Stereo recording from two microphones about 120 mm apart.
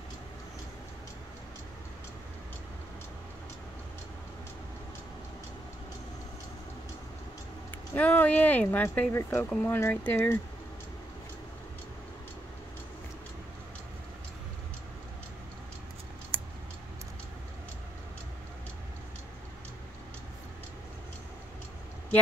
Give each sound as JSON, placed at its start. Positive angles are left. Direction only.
{"t": 7.9, "sound": "speech", "side_deg": 15}